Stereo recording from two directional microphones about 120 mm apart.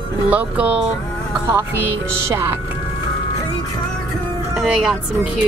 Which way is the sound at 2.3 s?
20° right (ahead or behind).